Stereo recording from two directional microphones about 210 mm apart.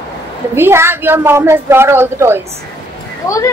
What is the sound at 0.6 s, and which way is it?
A woman's voice, 10° right (ahead or behind).